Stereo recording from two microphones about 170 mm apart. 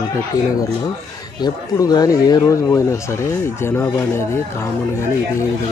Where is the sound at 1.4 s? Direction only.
25° left (ahead or behind).